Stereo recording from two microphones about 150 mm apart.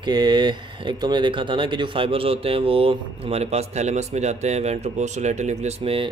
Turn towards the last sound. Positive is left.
turn(degrees=-40)  # may be behind; listen again after turning